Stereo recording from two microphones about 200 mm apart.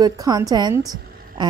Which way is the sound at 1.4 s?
25° right (ahead or behind).